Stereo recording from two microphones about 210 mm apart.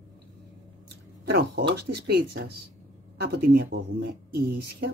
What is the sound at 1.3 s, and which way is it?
Speech, 50° right (ahead or behind).